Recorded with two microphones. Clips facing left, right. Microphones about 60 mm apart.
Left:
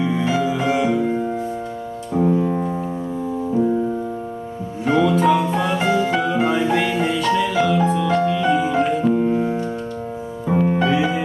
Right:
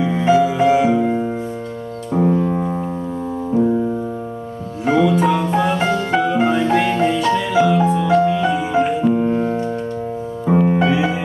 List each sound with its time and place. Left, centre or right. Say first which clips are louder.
0.3 s music: right 10 dB; centre
2.1 s piano: right 1 dB; centre
4.8 s music: right 1 dB; centre